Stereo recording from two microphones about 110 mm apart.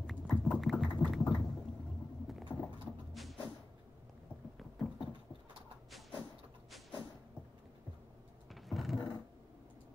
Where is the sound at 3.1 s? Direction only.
Centre (ahead or behind).